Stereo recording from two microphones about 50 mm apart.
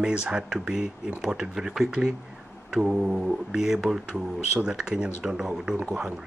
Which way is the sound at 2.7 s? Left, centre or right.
Centre.